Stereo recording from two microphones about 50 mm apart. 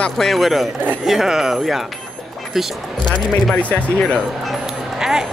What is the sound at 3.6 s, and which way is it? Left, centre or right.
Speech, left.